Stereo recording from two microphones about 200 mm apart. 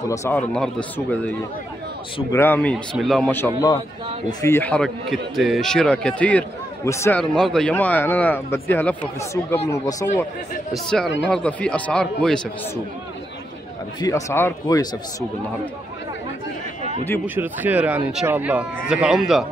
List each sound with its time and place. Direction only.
0.1 s a man's voice: 10° left (ahead or behind)
2.3 s a man's voice: 10° left (ahead or behind)
10.7 s speech: centre (ahead or behind)
14.0 s a man's voice: 15° left (ahead or behind)
17.4 s speech: 10° right (ahead or behind)